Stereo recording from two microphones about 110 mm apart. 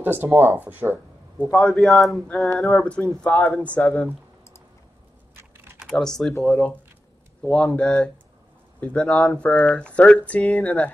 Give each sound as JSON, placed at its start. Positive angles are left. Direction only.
{"t": 0.0, "sound": "speech", "side_deg": -20}
{"t": 1.4, "sound": "a man's voice", "side_deg": 10}
{"t": 2.4, "sound": "speech", "side_deg": 20}
{"t": 2.7, "sound": "speech", "side_deg": 10}
{"t": 5.3, "sound": "typing", "side_deg": -20}
{"t": 5.8, "sound": "speech", "side_deg": 0}